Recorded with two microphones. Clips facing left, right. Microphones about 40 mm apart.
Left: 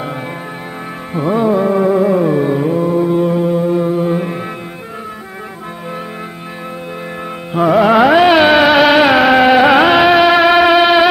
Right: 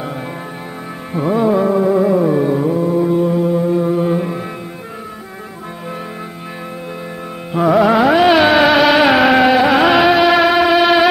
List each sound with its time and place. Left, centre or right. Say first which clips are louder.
1.1 s music: left 1 dB; centre
7.5 s music: left 2 dB; centre
8.3 s music: left 2 dB; centre
9.5 s music: left 3 dB; centre
9.8 s music: left 2 dB; centre